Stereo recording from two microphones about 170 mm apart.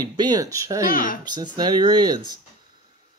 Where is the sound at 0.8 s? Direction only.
55° left (ahead or behind).